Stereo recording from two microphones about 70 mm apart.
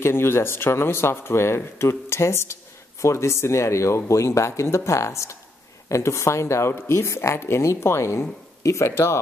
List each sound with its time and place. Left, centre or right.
0.0 s speech: left